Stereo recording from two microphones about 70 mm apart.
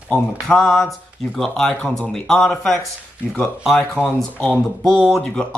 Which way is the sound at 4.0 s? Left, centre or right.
Centre.